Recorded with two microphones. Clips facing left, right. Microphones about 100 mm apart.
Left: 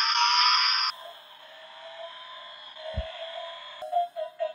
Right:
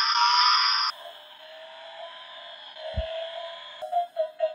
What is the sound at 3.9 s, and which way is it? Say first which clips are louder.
Music: right 1 dB; centre (ahead or behind).